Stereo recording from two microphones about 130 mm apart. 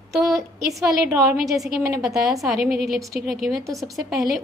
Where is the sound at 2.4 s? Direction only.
Centre (ahead or behind).